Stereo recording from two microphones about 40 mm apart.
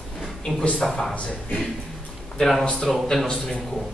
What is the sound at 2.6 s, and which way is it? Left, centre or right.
Speech, left.